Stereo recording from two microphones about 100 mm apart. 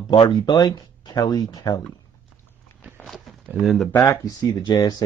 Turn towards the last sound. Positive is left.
turn(degrees=40)  # may be behind; listen again after turning